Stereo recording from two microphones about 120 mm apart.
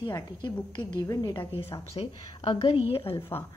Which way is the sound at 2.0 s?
50° left (ahead or behind).